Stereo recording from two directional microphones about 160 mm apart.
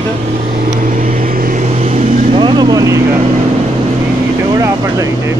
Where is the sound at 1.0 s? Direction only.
60° right (ahead or behind).